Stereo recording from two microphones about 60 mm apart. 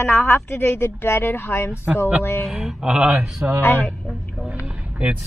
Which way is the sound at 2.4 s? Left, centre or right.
Centre.